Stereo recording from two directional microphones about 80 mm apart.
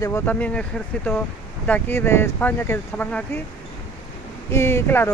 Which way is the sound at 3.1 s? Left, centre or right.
Centre.